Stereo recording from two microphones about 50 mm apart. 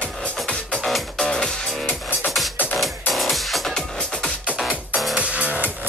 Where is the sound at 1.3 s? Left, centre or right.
Centre.